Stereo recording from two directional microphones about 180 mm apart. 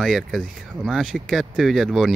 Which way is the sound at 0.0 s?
Centre (ahead or behind).